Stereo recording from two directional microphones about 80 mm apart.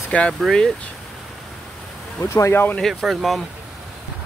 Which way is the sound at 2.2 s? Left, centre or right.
Left.